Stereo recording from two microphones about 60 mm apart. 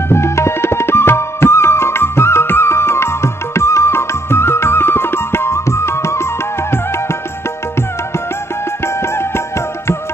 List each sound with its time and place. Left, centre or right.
0.1 s music: left
8.8 s music: left